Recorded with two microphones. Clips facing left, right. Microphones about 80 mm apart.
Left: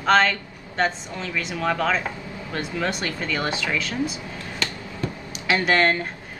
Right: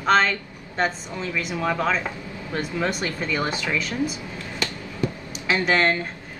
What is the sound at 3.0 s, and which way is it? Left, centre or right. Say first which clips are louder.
Speech: right 1 dB; centre.